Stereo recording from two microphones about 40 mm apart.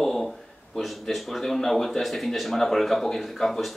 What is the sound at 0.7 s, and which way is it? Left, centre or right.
A man's voice, centre.